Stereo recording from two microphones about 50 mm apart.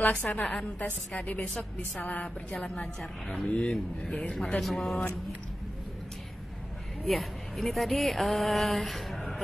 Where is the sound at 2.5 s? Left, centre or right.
Centre.